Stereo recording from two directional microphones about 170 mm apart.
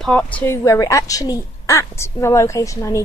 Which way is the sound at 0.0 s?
5° left (ahead or behind).